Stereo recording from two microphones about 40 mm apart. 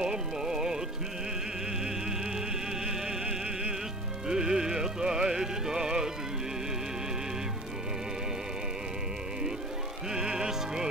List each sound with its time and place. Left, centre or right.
0.0 s music: centre
1.9 s music: centre
10.1 s music: centre